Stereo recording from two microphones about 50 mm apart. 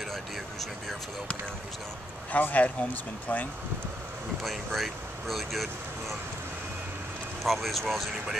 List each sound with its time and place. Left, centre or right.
0.1 s speech: centre
2.3 s speech: left
4.4 s speech: centre
7.4 s speech: centre